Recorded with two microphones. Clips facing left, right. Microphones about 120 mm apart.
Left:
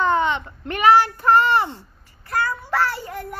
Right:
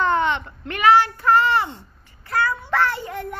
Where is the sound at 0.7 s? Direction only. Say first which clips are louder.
Left 1 dB; 35° left (ahead or behind).